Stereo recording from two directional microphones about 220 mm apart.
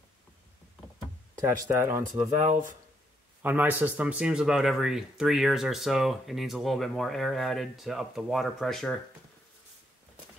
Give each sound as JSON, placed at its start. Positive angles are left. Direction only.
{"t": 1.4, "sound": "speech", "side_deg": -10}
{"t": 3.4, "sound": "speech", "side_deg": -10}